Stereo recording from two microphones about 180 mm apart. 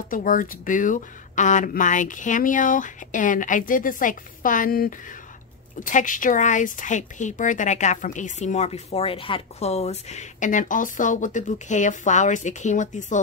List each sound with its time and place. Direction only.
0.1 s speech: 50° left (ahead or behind)